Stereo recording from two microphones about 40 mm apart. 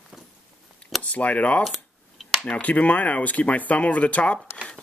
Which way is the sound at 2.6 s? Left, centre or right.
Left.